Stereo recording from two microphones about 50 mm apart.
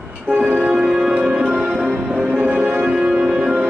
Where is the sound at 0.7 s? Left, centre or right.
Centre.